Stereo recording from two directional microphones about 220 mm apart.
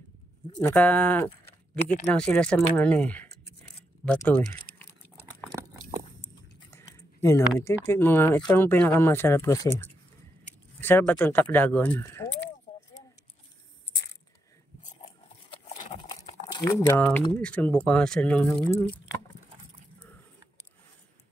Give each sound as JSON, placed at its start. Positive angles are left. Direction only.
{"t": 0.6, "sound": "speech", "side_deg": 10}
{"t": 1.8, "sound": "speech", "side_deg": 35}
{"t": 2.1, "sound": "speech", "side_deg": 5}
{"t": 5.5, "sound": "a sound", "side_deg": -10}
{"t": 6.7, "sound": "a sound", "side_deg": 15}
{"t": 7.6, "sound": "speech", "side_deg": 10}
{"t": 16.0, "sound": "typing", "side_deg": 20}
{"t": 17.3, "sound": "speech", "side_deg": 5}